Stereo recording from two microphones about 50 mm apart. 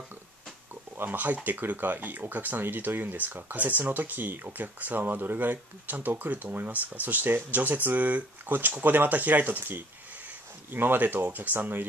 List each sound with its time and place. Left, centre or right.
0.9 s speech: right